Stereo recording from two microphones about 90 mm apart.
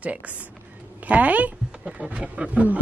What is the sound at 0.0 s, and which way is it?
Speech, 15° right (ahead or behind).